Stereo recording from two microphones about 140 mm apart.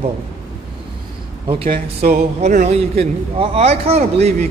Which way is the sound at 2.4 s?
55° right (ahead or behind).